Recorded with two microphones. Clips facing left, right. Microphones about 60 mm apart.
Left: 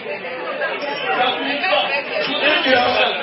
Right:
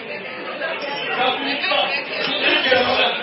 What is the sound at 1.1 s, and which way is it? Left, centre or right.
Chatter, centre.